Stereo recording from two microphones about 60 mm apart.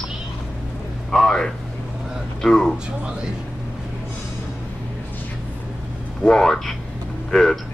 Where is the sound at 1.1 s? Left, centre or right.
Centre.